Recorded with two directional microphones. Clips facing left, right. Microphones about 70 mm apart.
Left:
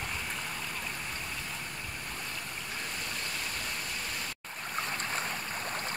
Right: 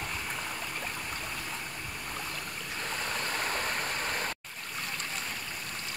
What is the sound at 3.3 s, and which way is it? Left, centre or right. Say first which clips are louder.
Vehicle: right 6 dB; right.